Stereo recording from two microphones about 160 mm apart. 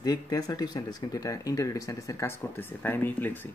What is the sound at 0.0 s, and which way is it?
Speech, 25° left (ahead or behind).